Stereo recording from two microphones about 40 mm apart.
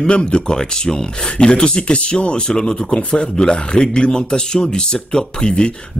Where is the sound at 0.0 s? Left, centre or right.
Left.